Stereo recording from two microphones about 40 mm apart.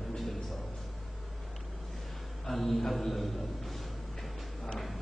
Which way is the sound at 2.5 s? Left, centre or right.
Centre.